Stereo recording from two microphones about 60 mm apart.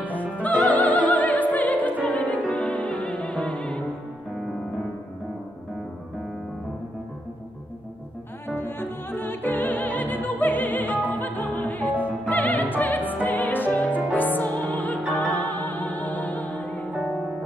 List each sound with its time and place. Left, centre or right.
0.0 s opera: left
2.5 s music: left
8.5 s music: left
11.1 s opera: left